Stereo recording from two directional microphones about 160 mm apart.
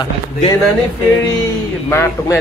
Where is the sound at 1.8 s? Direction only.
15° left (ahead or behind).